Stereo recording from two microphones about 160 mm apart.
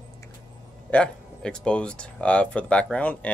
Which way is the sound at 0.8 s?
5° left (ahead or behind).